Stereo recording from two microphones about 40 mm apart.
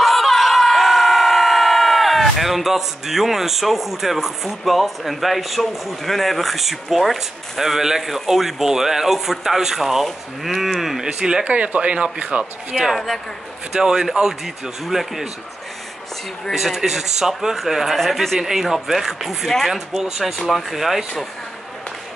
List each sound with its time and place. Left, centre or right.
0.0 s speech: centre
11.1 s speech: centre
11.4 s speech: right
12.9 s speech: centre
13.7 s speech: centre
16.5 s speech: centre
20.3 s speech: centre